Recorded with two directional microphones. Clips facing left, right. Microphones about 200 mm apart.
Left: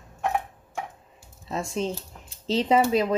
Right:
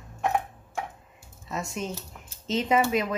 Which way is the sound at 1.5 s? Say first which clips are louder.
Left 4 dB; 30° left (ahead or behind).